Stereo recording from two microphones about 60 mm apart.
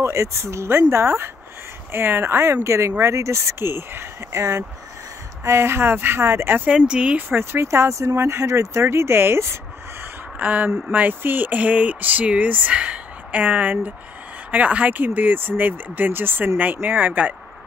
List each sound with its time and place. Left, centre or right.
0.0 s speech: right
6.9 s a sound: centre
7.2 s speech: right
7.6 s speech: right
10.4 s a sound: right
14.5 s speech: right